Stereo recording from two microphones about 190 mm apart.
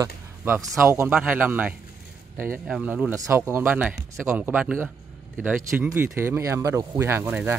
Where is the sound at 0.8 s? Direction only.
15° right (ahead or behind).